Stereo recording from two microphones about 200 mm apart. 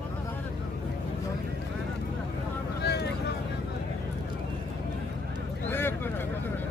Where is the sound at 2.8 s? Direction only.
55° left (ahead or behind).